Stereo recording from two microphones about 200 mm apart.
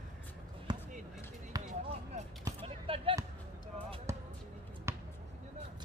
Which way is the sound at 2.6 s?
25° right (ahead or behind).